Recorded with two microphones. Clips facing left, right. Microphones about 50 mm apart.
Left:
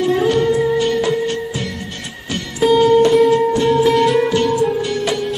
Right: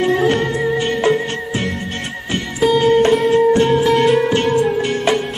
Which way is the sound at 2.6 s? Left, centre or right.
Centre.